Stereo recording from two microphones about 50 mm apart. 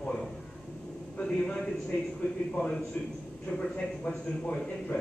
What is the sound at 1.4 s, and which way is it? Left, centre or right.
A man's voice, centre.